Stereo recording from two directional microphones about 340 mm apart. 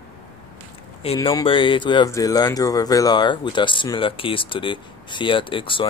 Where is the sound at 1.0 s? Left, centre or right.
Centre.